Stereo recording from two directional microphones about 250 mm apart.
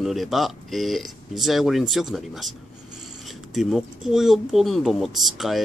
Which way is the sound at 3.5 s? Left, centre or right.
Centre.